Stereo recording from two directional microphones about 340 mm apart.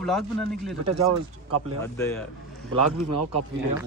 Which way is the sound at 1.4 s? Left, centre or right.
Right.